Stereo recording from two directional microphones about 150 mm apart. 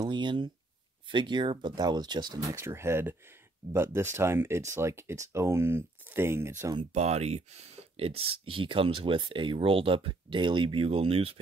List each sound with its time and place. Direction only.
0.0 s speech: 30° right (ahead or behind); by 6.5 s 15° right (ahead or behind)
6.9 s speech: 45° right (ahead or behind)